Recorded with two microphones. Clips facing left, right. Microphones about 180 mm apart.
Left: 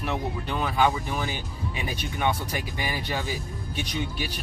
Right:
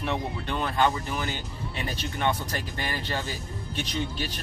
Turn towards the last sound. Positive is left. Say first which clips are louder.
# even
turn(degrees=10)  # may be behind; listen again after turning